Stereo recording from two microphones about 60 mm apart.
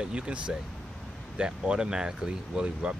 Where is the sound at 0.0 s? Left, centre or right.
Centre.